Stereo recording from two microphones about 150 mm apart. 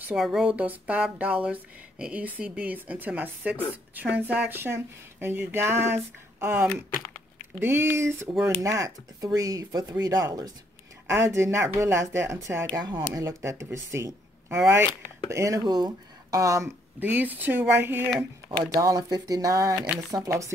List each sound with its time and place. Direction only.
0.0 s speech: 5° right (ahead or behind); by 20.5 s 20° right (ahead or behind)